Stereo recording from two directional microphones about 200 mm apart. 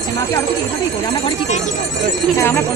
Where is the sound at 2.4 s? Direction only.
15° left (ahead or behind).